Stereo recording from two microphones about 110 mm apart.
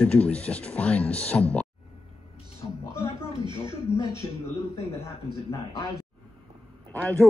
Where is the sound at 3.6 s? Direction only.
45° right (ahead or behind).